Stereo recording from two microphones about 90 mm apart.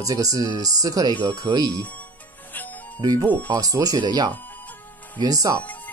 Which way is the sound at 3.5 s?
40° right (ahead or behind).